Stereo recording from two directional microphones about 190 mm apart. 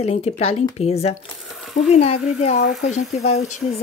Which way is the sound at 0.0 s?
30° left (ahead or behind).